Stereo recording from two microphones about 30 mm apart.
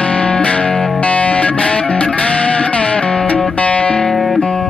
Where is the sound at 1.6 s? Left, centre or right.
Left.